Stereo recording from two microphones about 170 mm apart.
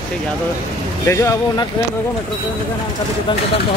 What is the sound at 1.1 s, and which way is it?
Speech, 15° left (ahead or behind).